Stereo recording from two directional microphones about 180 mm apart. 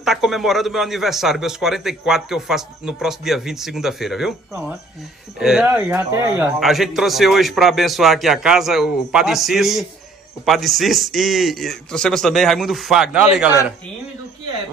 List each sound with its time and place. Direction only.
0.0 s a man's voice: centre (ahead or behind)